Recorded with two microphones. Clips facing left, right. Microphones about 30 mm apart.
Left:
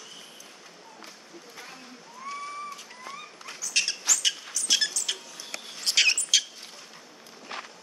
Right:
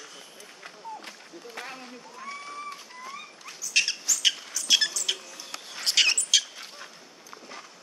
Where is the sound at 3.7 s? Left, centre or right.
Centre.